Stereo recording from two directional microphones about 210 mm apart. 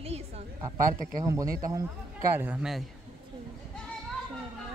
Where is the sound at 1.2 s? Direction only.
15° right (ahead or behind).